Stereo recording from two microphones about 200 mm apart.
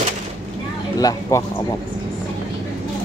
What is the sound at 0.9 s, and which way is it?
Speech, 20° left (ahead or behind).